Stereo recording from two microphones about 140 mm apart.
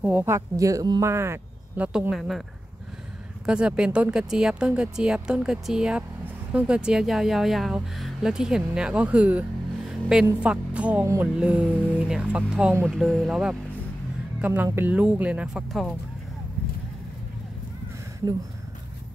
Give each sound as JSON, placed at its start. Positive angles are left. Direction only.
{"t": 0.0, "sound": "speech", "side_deg": -15}
{"t": 1.9, "sound": "speech", "side_deg": -5}
{"t": 3.4, "sound": "speech", "side_deg": -5}